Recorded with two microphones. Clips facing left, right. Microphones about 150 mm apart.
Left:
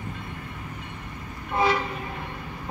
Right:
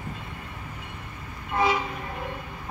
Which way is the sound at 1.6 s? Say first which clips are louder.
Left 1 dB; 15° right (ahead or behind).